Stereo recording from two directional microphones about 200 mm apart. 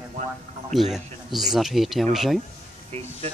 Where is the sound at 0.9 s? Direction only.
Centre (ahead or behind).